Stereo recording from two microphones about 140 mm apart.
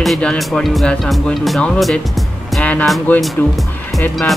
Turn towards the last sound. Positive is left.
turn(degrees=0)  # may be behind; listen again after turning